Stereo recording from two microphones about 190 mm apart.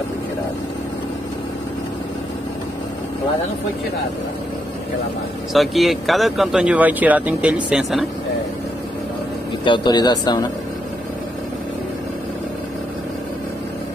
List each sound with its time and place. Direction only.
5.5 s speech: centre (ahead or behind)
9.7 s speech: 20° left (ahead or behind)